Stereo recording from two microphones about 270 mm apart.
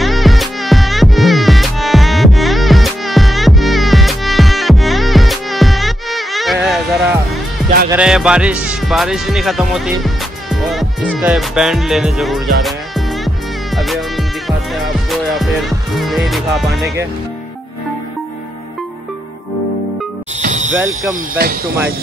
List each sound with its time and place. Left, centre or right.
0.0 s music: centre
7.9 s speech: centre
14.7 s music: centre
20.4 s a sound: right
20.7 s speech: centre
21.1 s speech: right